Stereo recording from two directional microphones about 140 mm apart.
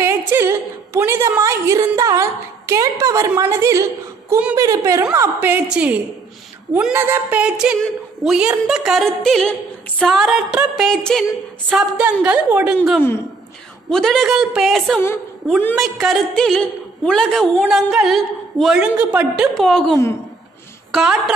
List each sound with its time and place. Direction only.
0.0 s a sound: 15° right (ahead or behind)
1.8 s a woman's voice: 25° right (ahead or behind); by 11.2 s 5° left (ahead or behind)
11.7 s a woman's voice: 5° right (ahead or behind)
13.8 s a woman's voice: centre (ahead or behind)